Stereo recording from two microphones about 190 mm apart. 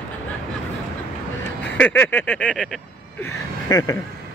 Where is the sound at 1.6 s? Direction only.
10° left (ahead or behind).